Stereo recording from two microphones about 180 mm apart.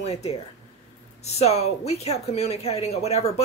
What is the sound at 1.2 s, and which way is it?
Speech, 35° left (ahead or behind).